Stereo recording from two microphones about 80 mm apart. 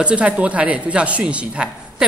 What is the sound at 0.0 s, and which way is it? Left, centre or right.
Speech, centre.